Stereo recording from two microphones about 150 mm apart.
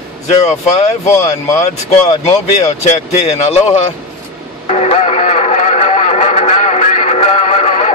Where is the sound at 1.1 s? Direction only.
20° left (ahead or behind).